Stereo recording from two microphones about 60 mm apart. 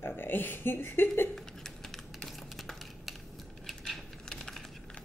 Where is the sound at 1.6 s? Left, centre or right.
Centre.